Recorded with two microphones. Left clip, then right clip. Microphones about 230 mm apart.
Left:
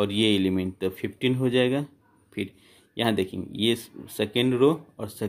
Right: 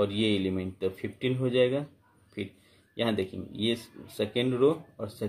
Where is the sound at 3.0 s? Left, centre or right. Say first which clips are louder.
Left 4 dB; left.